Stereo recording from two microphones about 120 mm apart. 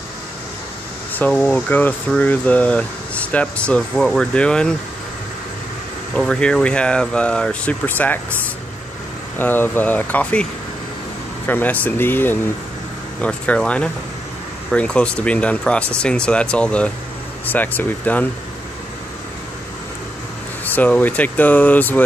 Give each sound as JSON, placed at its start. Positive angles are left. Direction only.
{"t": 1.1, "sound": "speech", "side_deg": 15}
{"t": 6.1, "sound": "speech", "side_deg": 5}
{"t": 9.4, "sound": "speech", "side_deg": 15}
{"t": 20.6, "sound": "speech", "side_deg": 15}